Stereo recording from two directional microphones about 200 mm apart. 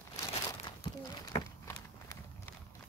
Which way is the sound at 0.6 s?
20° left (ahead or behind).